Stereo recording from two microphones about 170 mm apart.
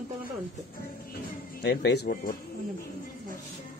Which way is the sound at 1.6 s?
80° left.